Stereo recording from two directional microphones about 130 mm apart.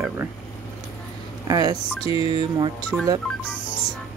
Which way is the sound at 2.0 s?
45° left (ahead or behind).